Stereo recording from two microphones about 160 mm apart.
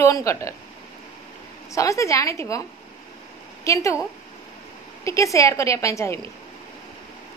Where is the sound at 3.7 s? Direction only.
20° left (ahead or behind).